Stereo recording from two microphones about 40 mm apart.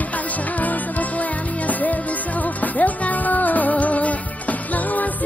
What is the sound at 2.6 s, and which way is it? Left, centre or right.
Music, left.